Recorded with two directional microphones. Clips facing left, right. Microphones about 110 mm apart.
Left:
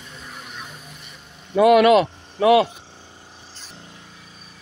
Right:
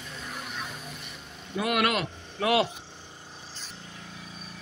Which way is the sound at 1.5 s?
90° left.